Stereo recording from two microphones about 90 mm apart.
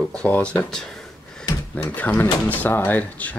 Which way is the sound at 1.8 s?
20° left (ahead or behind).